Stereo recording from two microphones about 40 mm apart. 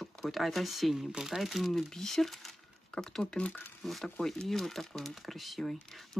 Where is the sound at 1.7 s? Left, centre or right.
Centre.